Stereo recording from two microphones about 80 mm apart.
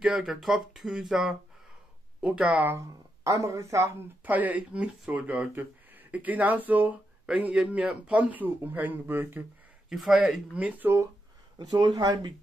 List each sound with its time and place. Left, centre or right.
0.0 s speech: centre
2.6 s speech: right
4.2 s speech: right
9.8 s speech: centre
11.5 s speech: right